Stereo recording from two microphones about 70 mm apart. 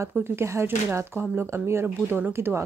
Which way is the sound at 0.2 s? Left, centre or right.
Right.